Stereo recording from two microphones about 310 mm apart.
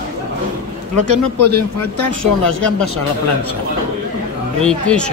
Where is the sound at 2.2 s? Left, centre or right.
Right.